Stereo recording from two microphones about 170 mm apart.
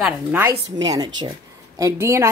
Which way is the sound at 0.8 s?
20° right (ahead or behind).